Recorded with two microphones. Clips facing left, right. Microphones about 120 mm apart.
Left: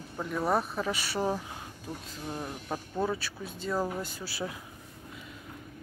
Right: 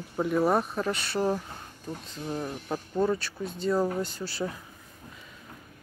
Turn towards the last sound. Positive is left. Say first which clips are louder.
# right 4 dB
turn(degrees=5)  # may be behind; listen again after turning